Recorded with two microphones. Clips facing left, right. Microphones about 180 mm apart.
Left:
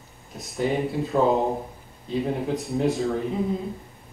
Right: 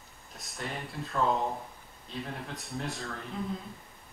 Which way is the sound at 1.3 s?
35° left (ahead or behind).